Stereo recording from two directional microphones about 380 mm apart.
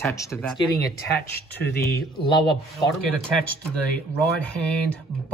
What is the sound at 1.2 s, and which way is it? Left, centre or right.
Speech, left.